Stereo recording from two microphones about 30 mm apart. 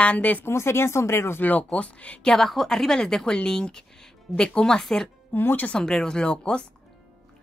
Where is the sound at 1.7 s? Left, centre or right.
Left.